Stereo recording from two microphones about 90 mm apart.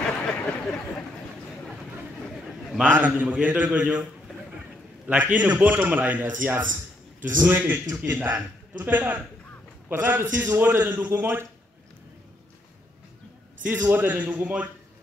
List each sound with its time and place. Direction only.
0.0 s a sound: 10° left (ahead or behind)
2.8 s a man's voice: 20° right (ahead or behind)
5.0 s a man's voice: 15° right (ahead or behind)
13.7 s a man's voice: 20° right (ahead or behind)